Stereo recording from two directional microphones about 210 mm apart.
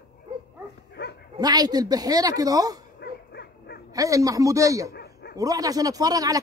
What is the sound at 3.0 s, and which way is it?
Dog, 50° left (ahead or behind).